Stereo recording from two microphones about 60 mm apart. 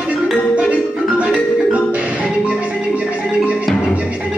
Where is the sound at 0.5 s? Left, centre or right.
Right.